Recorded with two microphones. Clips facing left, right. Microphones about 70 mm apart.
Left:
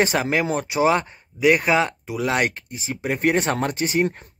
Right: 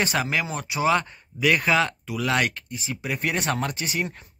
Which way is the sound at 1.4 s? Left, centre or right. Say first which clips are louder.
Left 3 dB; centre.